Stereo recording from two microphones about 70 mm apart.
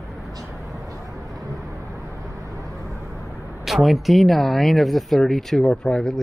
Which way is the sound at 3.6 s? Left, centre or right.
Centre.